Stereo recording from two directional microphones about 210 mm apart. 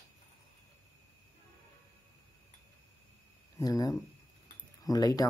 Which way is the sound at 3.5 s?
15° left (ahead or behind).